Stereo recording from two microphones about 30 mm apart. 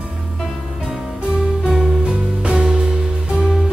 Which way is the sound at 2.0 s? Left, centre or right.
Right.